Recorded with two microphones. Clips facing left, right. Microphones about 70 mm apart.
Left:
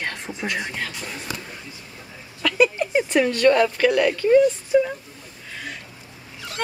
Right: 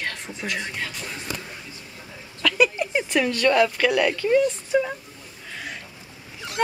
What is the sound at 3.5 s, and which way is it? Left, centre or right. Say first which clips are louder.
Speech: left 1 dB; centre.